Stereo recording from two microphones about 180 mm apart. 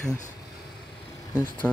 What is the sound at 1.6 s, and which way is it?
Speech, 10° left (ahead or behind).